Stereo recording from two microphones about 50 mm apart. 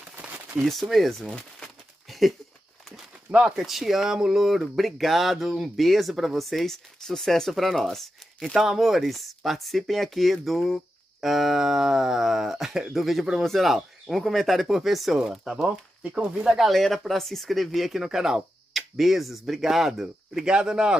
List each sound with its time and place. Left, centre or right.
0.2 s a sound: right
0.7 s speech: centre
2.0 s a sound: centre
3.3 s speech: right
3.5 s speech: centre
8.5 s speech: centre
16.0 s speech: right
16.5 s speech: centre
20.4 s speech: centre